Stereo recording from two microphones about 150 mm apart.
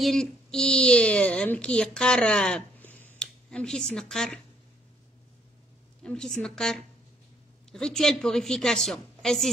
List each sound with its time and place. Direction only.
0.0 s a woman's voice: 5° left (ahead or behind)
6.0 s a woman's voice: 5° left (ahead or behind)